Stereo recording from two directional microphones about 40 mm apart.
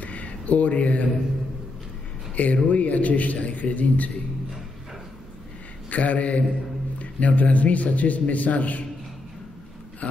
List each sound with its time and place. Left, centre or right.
0.0 s a sound: left
2.3 s a man's voice: left
5.9 s a man's voice: left